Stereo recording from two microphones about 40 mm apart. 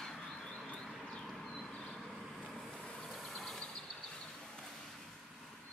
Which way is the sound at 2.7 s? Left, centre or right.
Left.